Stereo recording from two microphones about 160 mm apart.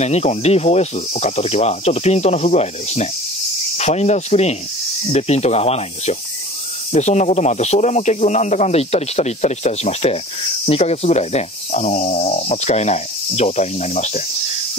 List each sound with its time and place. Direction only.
0.0 s speech: 45° left (ahead or behind)